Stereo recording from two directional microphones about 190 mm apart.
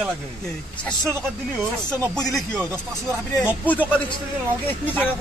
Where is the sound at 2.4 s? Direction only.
5° left (ahead or behind).